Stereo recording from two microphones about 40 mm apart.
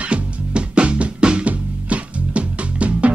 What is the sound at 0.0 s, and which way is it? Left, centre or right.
Music, right.